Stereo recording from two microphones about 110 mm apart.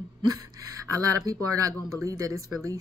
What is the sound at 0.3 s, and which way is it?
Speech, 30° right (ahead or behind).